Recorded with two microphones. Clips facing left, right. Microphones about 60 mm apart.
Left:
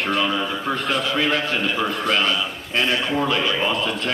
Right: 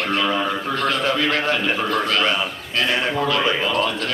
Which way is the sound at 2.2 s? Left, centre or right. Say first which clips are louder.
Right 2 dB; right.